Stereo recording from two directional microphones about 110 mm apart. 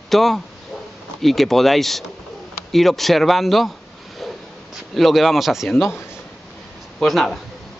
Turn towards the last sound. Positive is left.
turn(degrees=0)  # may be behind; listen again after turning